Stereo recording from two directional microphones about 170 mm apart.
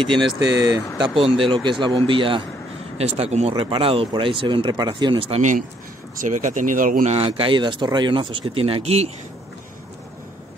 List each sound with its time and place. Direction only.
0.0 s speech: 30° right (ahead or behind)
0.5 s speech: 90° right
1.0 s speech: 30° right (ahead or behind)
6.1 s speech: 50° right (ahead or behind)
7.2 s speech: 30° right (ahead or behind)